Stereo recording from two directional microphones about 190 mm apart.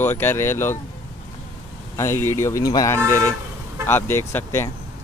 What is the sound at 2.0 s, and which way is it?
Speech, 15° left (ahead or behind).